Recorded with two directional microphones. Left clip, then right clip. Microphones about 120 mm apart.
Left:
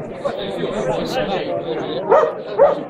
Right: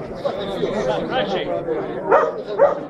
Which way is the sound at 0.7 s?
5° left (ahead or behind).